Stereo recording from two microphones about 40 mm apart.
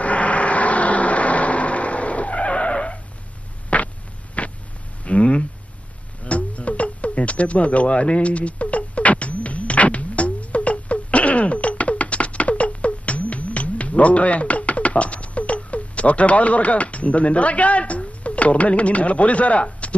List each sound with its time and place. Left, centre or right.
0.0 s vehicle: left
3.7 s hum: left
5.0 s a sound: left